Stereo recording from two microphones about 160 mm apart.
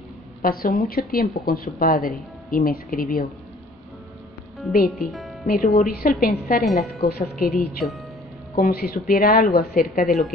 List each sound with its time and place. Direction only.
0.4 s speech: 65° left (ahead or behind)
4.8 s speech: centre (ahead or behind)
5.5 s a woman's voice: 65° left (ahead or behind)